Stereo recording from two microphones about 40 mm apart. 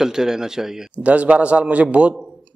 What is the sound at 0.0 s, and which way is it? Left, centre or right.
Speech, centre.